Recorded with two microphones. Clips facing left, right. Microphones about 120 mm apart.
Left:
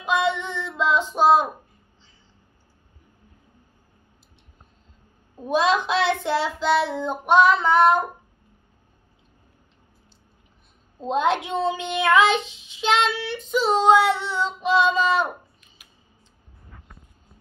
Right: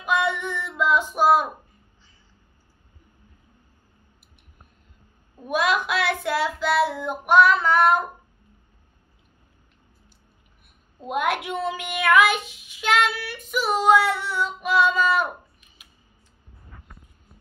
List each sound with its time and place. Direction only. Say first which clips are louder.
0.0 s female singing: left 1 dB; 20° left (ahead or behind)
1.1 s a sound: left 3 dB; 20° left (ahead or behind)
5.4 s child singing: left 2 dB; 30° left (ahead or behind)
11.0 s child singing: left 3 dB; 25° left (ahead or behind)